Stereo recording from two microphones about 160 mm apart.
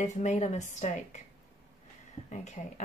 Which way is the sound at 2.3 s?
45° left (ahead or behind).